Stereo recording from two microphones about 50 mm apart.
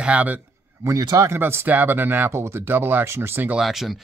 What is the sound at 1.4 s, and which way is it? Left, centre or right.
Speech, right.